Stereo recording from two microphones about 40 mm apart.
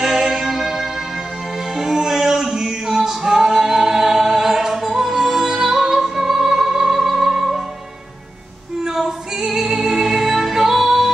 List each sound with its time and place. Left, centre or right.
0.0 s music: centre
1.7 s a capella: centre
8.8 s music: centre